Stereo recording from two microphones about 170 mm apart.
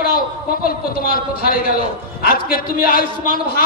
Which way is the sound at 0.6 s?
60° left (ahead or behind).